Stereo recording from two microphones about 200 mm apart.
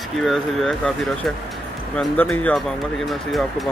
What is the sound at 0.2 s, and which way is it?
Speech, centre (ahead or behind).